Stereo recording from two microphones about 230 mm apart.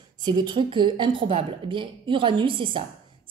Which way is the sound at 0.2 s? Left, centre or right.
Centre.